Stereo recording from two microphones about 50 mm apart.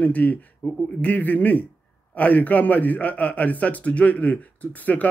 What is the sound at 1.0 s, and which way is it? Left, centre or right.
A man's voice, left.